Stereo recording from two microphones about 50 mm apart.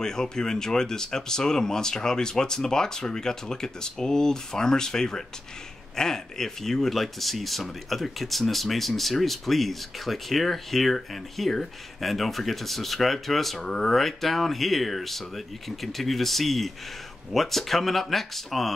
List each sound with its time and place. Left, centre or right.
0.0 s speech: centre
13.9 s speech: centre